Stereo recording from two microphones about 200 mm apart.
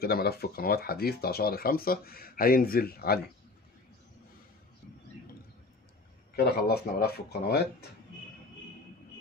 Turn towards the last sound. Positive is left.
turn(degrees=55)  # may be behind; listen again after turning